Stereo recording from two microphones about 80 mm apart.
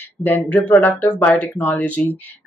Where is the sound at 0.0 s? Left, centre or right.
Left.